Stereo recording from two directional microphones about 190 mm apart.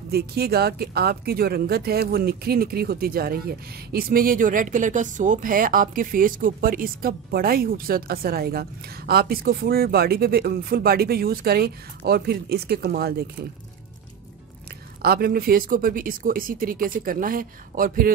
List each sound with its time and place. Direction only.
0.1 s speech: 55° right (ahead or behind)
15.0 s speech: 55° right (ahead or behind)